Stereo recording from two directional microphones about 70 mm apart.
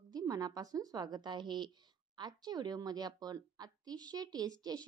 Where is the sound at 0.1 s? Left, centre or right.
Right.